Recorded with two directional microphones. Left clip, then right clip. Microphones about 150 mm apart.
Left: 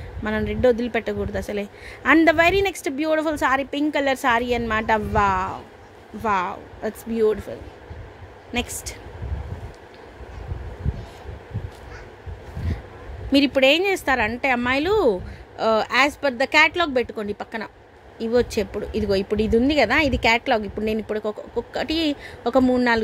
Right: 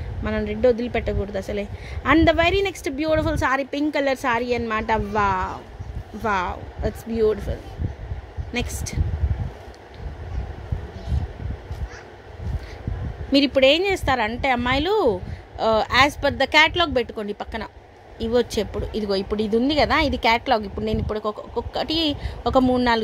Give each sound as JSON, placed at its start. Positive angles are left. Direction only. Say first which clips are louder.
{"t": 0.2, "sound": "a woman's voice", "louder": "even", "side_deg": 10}
{"t": 8.5, "sound": "a woman's voice", "louder": "left 1 dB", "side_deg": 10}
{"t": 13.3, "sound": "a woman's voice", "louder": "even", "side_deg": 10}